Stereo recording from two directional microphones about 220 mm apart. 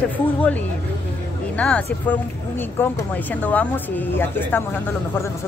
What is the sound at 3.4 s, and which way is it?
Speech, 10° left (ahead or behind).